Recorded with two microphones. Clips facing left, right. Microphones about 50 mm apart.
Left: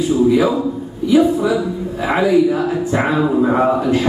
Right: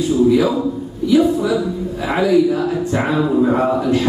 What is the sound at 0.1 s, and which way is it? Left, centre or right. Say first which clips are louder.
Speech: even; centre.